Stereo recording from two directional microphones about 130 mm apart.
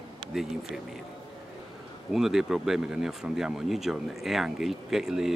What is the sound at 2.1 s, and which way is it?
Speech, 5° right (ahead or behind).